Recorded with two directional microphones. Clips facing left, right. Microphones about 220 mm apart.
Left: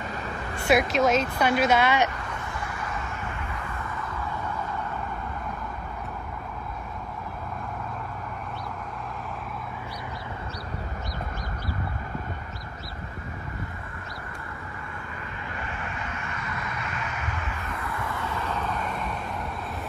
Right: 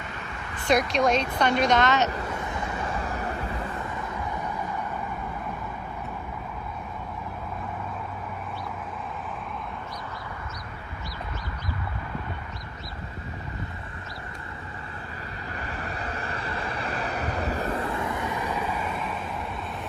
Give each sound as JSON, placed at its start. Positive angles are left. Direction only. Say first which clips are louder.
{"t": 0.7, "sound": "a woman's voice", "louder": "left 1 dB", "side_deg": 0}
{"t": 3.1, "sound": "vehicle", "louder": "right 4 dB", "side_deg": -35}
{"t": 15.5, "sound": "vehicle", "louder": "right 2 dB", "side_deg": -35}